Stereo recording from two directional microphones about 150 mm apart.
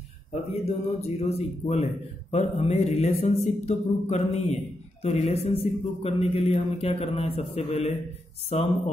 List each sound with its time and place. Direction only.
0.7 s speech: 45° left (ahead or behind)